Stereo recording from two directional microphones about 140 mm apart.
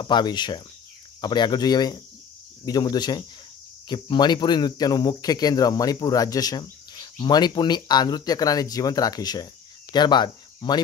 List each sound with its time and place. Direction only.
0.0 s speech: 30° left (ahead or behind)